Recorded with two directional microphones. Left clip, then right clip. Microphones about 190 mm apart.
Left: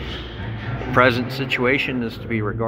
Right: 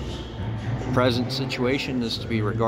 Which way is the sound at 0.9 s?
5° right (ahead or behind).